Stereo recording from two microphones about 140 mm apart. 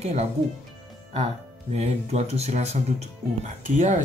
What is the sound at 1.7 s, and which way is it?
Speech, 50° right (ahead or behind).